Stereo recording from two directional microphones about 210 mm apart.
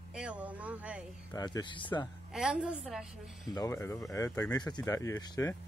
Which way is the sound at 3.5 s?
15° left (ahead or behind).